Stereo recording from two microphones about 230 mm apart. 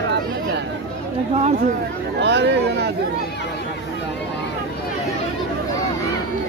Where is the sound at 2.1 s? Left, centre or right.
Right.